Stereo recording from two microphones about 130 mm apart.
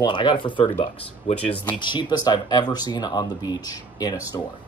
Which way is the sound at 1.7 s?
35° left (ahead or behind).